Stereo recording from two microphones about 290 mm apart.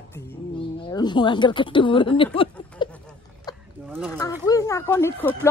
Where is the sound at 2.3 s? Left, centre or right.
Centre.